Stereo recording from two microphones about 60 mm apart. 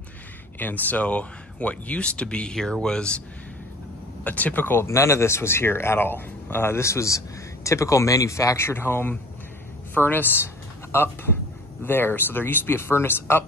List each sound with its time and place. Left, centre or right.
0.6 s speech: left; by 3.2 s centre
4.2 s speech: left
4.8 s speech: left
8.5 s speech: left